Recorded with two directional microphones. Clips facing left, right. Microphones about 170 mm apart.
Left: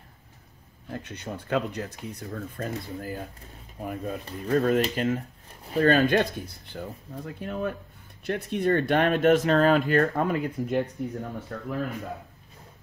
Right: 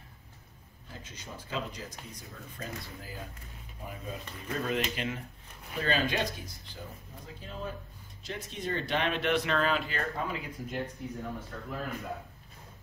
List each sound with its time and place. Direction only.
0.9 s speech: 65° left (ahead or behind)